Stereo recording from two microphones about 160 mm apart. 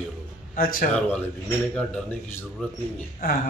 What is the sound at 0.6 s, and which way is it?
Speech, 65° left (ahead or behind).